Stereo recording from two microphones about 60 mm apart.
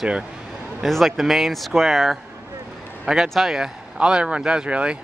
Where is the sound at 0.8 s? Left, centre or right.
Centre.